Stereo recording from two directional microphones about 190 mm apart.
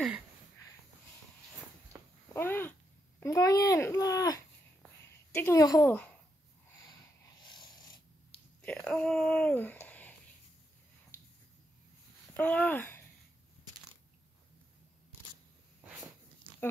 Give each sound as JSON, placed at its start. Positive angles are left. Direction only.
{"t": 2.3, "sound": "a sound", "side_deg": 10}
{"t": 3.2, "sound": "a child's voice", "side_deg": 15}
{"t": 7.4, "sound": "dog", "side_deg": 25}
{"t": 8.6, "sound": "speech", "side_deg": 5}
{"t": 12.4, "sound": "a child's voice", "side_deg": 10}